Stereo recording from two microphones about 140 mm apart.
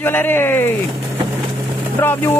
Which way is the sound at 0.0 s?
15° left (ahead or behind).